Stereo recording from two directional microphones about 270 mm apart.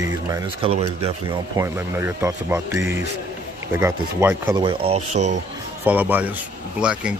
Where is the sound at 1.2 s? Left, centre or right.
Centre.